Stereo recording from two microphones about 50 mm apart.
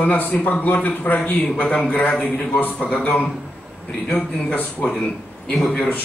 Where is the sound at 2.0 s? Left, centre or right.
Centre.